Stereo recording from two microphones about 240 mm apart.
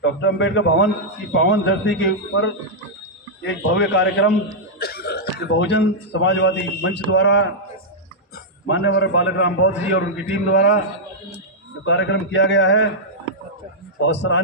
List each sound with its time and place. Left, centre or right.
0.0 s a man's voice: left
8.6 s a man's voice: left
11.8 s a man's voice: left
14.0 s a man's voice: left